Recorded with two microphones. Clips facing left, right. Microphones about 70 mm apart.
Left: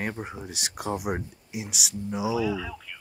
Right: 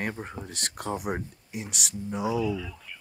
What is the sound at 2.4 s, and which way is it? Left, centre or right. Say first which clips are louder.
Speech: left 1 dB; left.